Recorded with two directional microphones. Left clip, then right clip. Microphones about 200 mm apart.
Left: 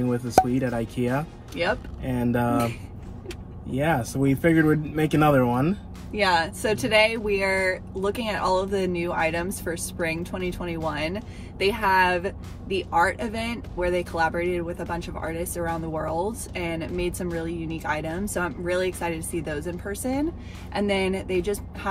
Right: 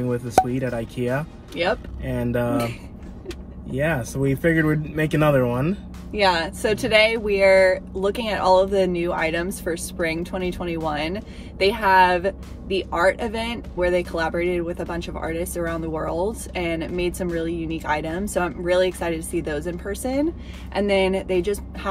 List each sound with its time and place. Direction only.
0.1 s speech: 5° left (ahead or behind)
1.6 s speech: 15° right (ahead or behind)
2.0 s speech: 5° left (ahead or behind)
3.7 s speech: 5° left (ahead or behind)
6.1 s speech: 10° right (ahead or behind)